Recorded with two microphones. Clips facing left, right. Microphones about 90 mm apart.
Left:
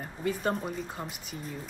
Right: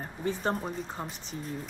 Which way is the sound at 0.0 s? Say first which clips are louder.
Even; 30° right (ahead or behind).